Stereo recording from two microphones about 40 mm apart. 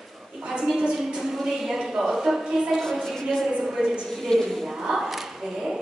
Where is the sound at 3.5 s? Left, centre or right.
Centre.